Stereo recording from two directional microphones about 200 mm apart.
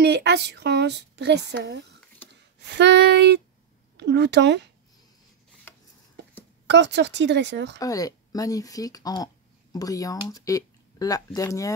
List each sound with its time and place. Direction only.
0.0 s speech: 55° right (ahead or behind)
6.7 s speech: 60° right (ahead or behind)
7.8 s speech: 15° left (ahead or behind)